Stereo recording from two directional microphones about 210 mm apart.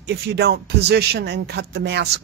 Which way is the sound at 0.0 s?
55° right (ahead or behind).